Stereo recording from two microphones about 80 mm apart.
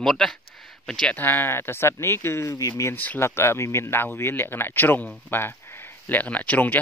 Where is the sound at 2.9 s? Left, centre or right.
Left.